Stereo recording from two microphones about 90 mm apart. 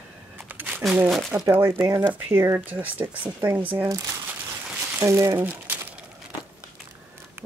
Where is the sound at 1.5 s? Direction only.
25° right (ahead or behind).